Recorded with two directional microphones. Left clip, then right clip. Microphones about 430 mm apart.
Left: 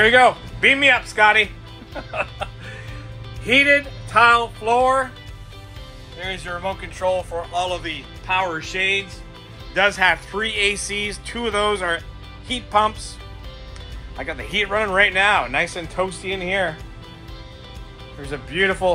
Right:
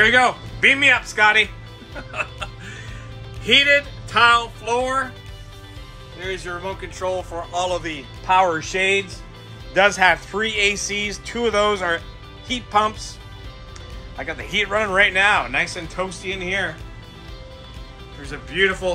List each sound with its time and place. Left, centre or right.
0.0 s speech: centre
2.0 s music: centre
4.1 s speech: centre
6.1 s speech: centre
14.1 s speech: centre
18.3 s speech: centre